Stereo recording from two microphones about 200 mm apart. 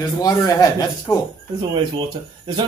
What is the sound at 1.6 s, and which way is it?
Speech, 25° right (ahead or behind).